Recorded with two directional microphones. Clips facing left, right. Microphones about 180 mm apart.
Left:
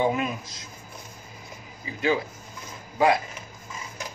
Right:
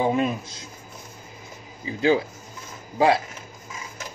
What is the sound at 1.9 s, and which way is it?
Speech, 30° right (ahead or behind).